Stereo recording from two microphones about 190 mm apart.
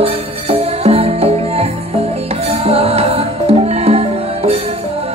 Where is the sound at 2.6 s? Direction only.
30° right (ahead or behind).